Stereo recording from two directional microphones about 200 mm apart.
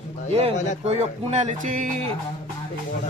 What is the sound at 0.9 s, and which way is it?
Speech, 35° right (ahead or behind).